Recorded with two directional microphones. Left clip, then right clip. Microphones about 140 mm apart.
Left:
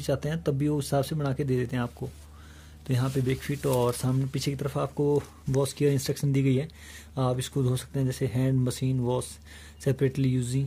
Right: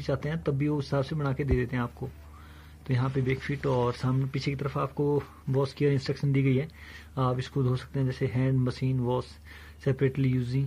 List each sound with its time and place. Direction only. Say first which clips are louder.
0.0 s speech: left 2 dB; 30° left (ahead or behind)
2.9 s speech: left 1 dB; 30° left (ahead or behind)